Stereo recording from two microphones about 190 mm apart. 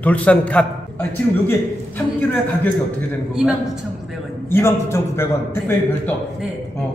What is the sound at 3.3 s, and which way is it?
Speech, 5° right (ahead or behind).